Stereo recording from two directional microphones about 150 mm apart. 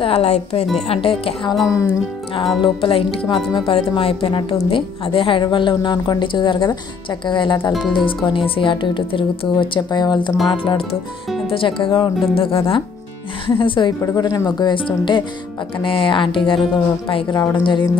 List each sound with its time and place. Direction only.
0.0 s speech: 45° left (ahead or behind)
1.7 s a woman's voice: 20° left (ahead or behind)
2.6 s a woman's voice: 35° left (ahead or behind)